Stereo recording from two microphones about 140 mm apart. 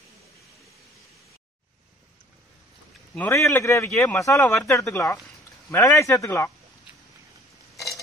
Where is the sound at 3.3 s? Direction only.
20° left (ahead or behind).